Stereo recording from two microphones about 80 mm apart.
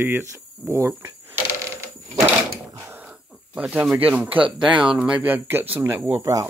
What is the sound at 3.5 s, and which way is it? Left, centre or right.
Speech, centre.